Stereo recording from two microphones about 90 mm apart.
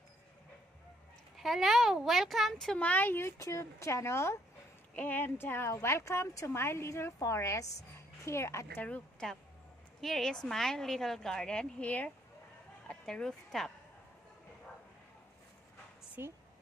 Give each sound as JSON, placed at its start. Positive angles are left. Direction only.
{"t": 1.3, "sound": "a woman's voice", "side_deg": 0}
{"t": 2.9, "sound": "a child's voice", "side_deg": 25}
{"t": 8.8, "sound": "speech", "side_deg": 15}
{"t": 9.9, "sound": "a woman's voice", "side_deg": 5}
{"t": 16.2, "sound": "a woman's voice", "side_deg": -25}